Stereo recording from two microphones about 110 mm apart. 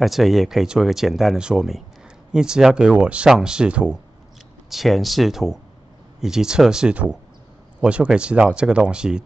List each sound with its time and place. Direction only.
0.0 s speech: centre (ahead or behind)